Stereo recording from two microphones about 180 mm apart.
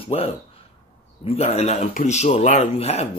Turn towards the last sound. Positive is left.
turn(degrees=35)  # may be behind; listen again after turning